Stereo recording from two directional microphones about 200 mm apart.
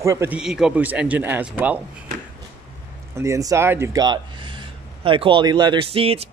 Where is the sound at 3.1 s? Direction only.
15° right (ahead or behind).